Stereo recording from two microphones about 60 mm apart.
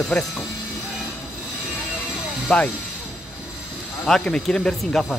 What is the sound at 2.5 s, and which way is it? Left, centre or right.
Speech, centre.